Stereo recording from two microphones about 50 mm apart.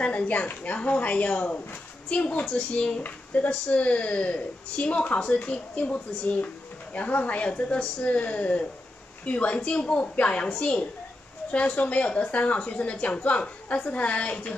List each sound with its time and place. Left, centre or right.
0.0 s a woman's voice: left